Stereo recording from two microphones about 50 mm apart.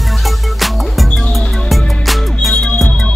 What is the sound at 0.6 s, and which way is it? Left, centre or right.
Music, centre.